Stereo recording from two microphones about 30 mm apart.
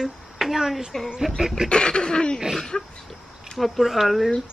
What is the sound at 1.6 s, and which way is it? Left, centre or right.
Speech, left.